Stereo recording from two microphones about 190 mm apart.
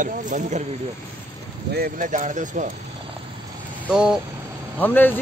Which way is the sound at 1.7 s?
50° right (ahead or behind).